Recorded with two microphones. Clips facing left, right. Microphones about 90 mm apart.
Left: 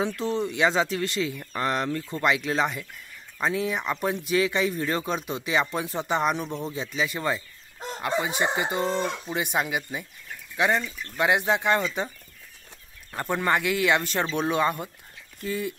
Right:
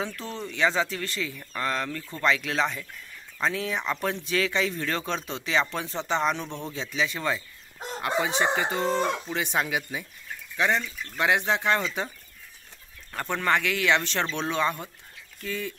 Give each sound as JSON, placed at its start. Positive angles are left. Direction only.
{"t": 0.0, "sound": "speech", "side_deg": 20}
{"t": 13.1, "sound": "speech", "side_deg": 15}